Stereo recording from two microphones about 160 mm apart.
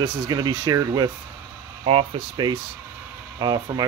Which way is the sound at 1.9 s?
40° right (ahead or behind).